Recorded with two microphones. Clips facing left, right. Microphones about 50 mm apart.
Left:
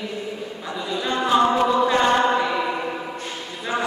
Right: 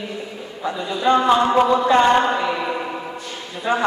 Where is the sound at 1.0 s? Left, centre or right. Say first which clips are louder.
Right 4 dB; right.